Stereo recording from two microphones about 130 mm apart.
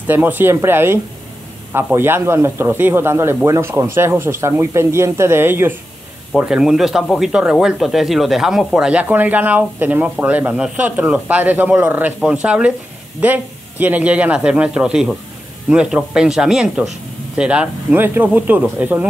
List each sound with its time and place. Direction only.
0.0 s speech: 15° right (ahead or behind)
6.3 s speech: 5° right (ahead or behind)